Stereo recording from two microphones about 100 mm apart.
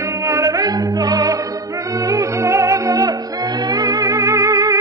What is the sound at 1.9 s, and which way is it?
Music, 35° right (ahead or behind).